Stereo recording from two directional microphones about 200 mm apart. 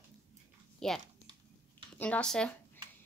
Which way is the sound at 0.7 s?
Centre (ahead or behind).